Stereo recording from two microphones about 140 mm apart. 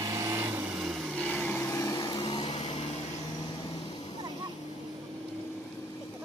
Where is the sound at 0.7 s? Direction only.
Centre (ahead or behind); by 2.5 s 30° left (ahead or behind).